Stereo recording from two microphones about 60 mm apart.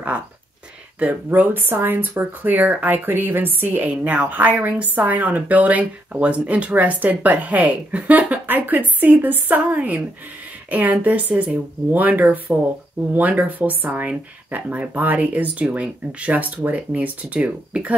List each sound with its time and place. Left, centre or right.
0.9 s a woman's voice: right